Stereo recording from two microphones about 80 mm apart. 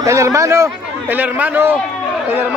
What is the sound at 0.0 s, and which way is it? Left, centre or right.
Speech, right.